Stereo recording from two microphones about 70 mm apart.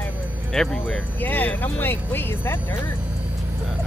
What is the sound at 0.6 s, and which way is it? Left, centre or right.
Speech, centre.